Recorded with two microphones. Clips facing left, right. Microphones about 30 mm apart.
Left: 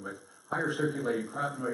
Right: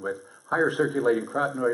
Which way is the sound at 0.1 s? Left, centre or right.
Right.